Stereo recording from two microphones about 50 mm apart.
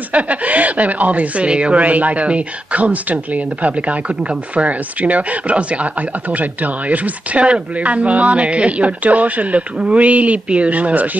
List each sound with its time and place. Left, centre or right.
0.1 s speech: right